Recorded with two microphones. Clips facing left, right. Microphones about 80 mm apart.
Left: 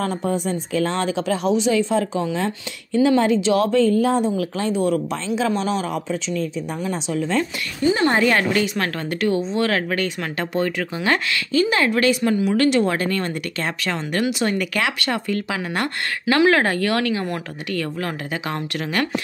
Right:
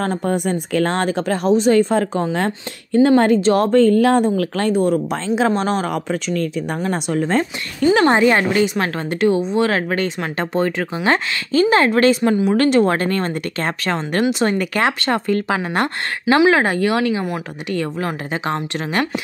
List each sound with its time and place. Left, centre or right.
0.0 s a woman's voice: right
4.8 s a woman's voice: right
8.1 s a woman's voice: right
16.3 s a woman's voice: centre
17.7 s a woman's voice: right